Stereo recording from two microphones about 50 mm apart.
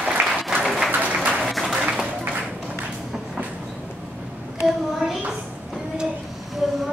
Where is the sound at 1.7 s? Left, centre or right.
Centre.